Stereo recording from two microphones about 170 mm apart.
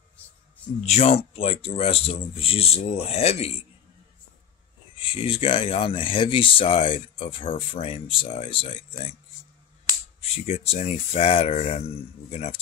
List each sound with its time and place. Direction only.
0.8 s speech: 35° left (ahead or behind)
4.9 s speech: 30° left (ahead or behind)
10.2 s speech: 35° left (ahead or behind)